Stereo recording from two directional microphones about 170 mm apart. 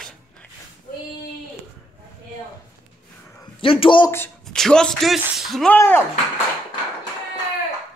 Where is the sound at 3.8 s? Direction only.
30° left (ahead or behind).